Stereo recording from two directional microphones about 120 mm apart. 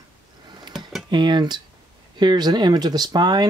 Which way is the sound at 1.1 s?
40° right (ahead or behind).